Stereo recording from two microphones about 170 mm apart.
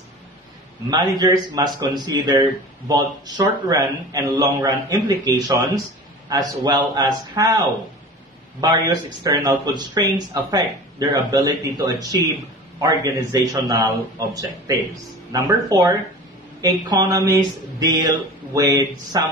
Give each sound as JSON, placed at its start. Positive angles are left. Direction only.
{"t": 0.8, "sound": "speech", "side_deg": -25}
{"t": 15.3, "sound": "speech", "side_deg": -20}